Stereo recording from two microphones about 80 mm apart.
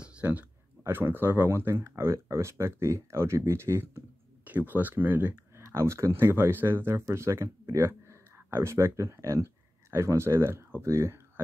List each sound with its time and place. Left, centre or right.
0.0 s a sound: centre
0.8 s speech: right
5.6 s speech: right